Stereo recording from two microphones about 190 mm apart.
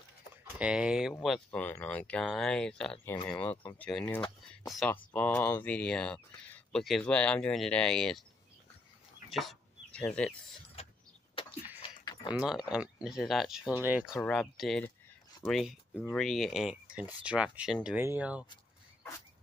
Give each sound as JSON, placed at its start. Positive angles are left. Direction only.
{"t": 0.6, "sound": "speech", "side_deg": -5}
{"t": 9.3, "sound": "speech", "side_deg": 0}
{"t": 12.0, "sound": "a sound", "side_deg": 25}
{"t": 12.4, "sound": "speech", "side_deg": -5}
{"t": 14.2, "sound": "speech", "side_deg": 5}